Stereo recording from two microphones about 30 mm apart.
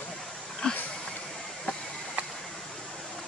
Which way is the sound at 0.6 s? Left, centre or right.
Left.